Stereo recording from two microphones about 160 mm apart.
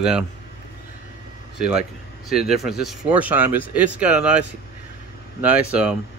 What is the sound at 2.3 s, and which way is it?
Speech, centre (ahead or behind).